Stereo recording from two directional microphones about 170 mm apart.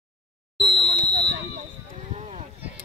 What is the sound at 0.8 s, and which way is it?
Basketball bounce, 25° right (ahead or behind).